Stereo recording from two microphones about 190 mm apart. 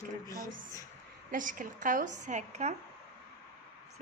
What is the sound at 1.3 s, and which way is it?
A woman's voice, 45° right (ahead or behind).